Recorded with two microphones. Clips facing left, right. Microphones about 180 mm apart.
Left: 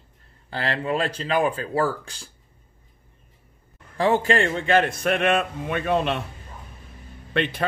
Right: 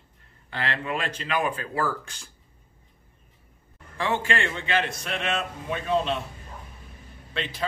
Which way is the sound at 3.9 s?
35° left (ahead or behind).